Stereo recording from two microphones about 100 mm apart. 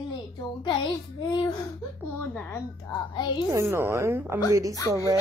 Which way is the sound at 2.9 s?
50° left (ahead or behind).